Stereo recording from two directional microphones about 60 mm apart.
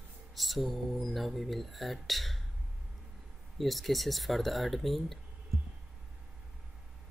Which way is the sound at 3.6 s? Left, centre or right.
Centre.